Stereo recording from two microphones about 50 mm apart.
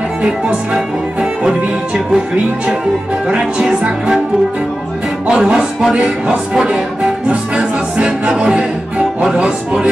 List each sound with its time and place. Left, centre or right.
0.2 s music: right
3.3 s music: right
5.3 s speech: centre